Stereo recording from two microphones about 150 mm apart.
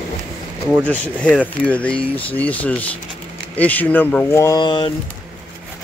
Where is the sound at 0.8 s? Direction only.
10° left (ahead or behind).